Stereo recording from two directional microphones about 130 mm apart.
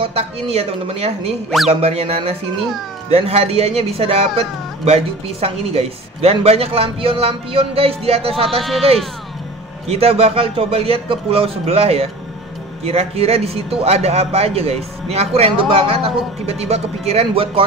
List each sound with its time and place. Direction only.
0.0 s speech: 50° right (ahead or behind)
9.8 s speech: 50° right (ahead or behind)